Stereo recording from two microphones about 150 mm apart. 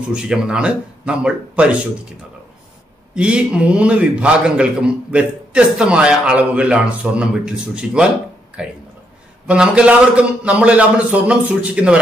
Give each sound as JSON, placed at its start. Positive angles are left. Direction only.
{"t": 0.1, "sound": "a man's voice", "side_deg": -5}
{"t": 3.2, "sound": "a man's voice", "side_deg": -5}